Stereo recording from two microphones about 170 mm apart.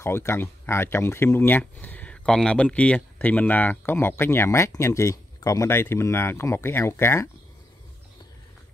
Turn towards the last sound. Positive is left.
turn(degrees=15)  # may be behind; listen again after turning